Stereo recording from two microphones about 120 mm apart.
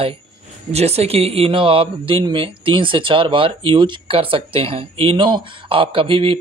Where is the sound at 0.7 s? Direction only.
60° right (ahead or behind).